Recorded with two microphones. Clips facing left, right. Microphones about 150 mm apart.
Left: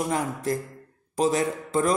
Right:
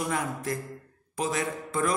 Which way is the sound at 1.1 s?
35° left (ahead or behind).